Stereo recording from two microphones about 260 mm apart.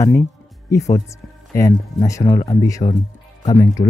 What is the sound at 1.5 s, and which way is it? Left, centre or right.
Speech, centre.